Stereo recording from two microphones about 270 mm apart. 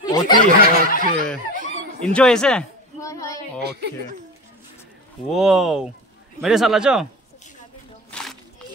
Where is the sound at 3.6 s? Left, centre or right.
Right.